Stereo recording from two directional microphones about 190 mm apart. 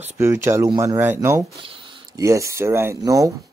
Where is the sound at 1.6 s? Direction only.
25° right (ahead or behind).